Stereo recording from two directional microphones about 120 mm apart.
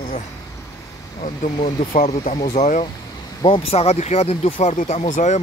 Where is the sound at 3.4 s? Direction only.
50° left (ahead or behind); by 5.4 s 80° left.